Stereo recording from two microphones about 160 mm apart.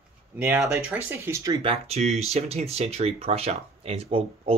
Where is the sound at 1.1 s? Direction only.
15° right (ahead or behind).